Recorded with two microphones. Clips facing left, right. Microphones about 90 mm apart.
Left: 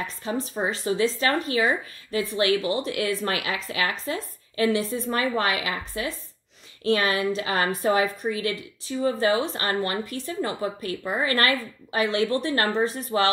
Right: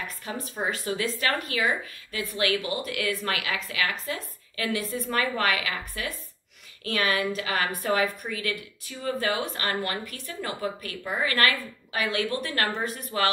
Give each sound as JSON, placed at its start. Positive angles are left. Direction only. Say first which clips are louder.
{"t": 0.0, "sound": "speech", "louder": "left 6 dB", "side_deg": 30}